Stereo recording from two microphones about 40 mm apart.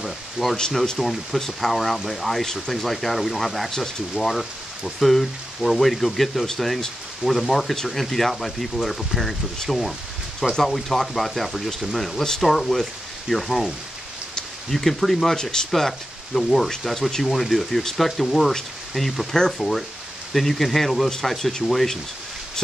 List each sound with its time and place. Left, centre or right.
0.0 s speech: centre
15.3 s speech: centre
16.3 s speech: centre
20.3 s speech: centre